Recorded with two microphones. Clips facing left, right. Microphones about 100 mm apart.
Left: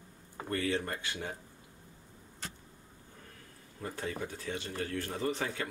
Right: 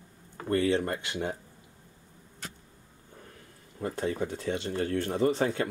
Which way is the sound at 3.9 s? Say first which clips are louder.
Right 7 dB; 25° right (ahead or behind).